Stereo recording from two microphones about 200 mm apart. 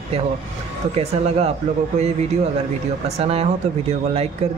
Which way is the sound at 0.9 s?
30° right (ahead or behind).